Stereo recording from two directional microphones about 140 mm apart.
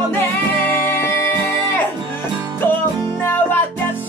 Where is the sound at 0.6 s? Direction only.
15° left (ahead or behind).